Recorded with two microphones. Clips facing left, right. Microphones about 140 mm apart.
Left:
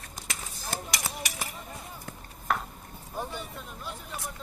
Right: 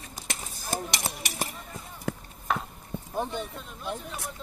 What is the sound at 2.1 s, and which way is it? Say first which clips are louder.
Chop: right 11 dB; 90° right.